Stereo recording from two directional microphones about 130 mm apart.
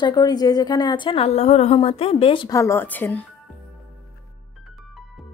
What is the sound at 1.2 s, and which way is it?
A woman's voice, 55° left (ahead or behind).